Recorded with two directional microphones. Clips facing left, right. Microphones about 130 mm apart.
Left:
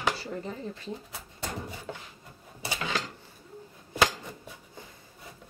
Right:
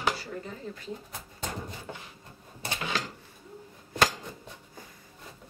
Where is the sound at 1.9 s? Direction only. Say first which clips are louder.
Left 2 dB; 10° right (ahead or behind).